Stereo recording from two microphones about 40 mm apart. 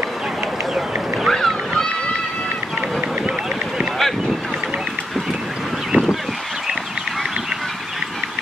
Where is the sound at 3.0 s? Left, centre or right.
Right.